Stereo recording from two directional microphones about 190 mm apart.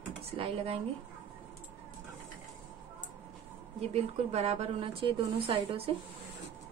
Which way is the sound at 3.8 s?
35° right (ahead or behind).